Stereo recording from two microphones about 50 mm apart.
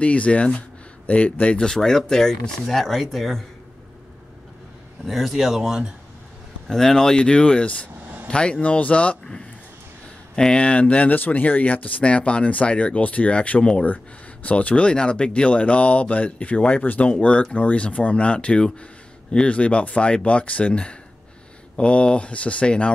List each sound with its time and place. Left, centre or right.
0.0 s speech: left
1.6 s speech: centre
5.0 s speech: centre
6.7 s speech: centre; by 9.2 s left
10.3 s speech: centre